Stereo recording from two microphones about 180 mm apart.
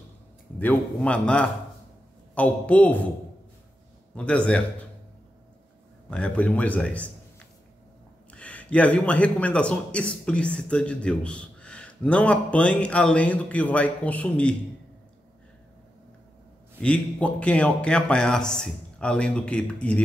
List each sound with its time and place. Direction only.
0.6 s a man's voice: 10° left (ahead or behind)
4.1 s a man's voice: 5° left (ahead or behind)
6.0 s a man's voice: 5° left (ahead or behind)
16.8 s a man's voice: 5° left (ahead or behind)